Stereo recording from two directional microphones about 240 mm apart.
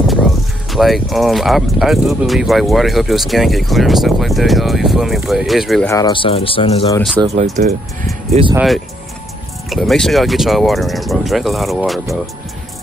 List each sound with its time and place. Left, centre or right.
0.7 s speech: centre
5.9 s speech: centre
7.2 s speech: right
8.5 s speech: centre